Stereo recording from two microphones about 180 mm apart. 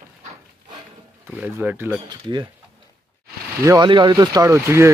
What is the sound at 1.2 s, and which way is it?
Speech, 10° right (ahead or behind).